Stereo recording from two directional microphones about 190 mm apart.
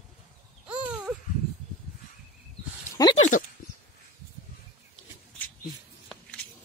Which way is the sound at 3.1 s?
40° left (ahead or behind).